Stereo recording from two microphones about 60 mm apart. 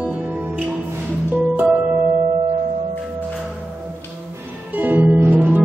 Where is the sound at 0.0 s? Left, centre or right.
Right.